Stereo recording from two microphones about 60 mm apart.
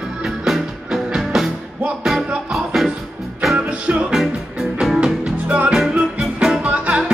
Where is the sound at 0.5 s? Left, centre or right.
Centre.